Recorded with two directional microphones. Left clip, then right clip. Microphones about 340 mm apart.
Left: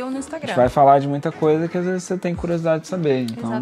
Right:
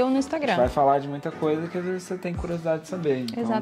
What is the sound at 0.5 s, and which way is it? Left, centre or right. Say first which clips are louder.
Speech: left 8 dB; left.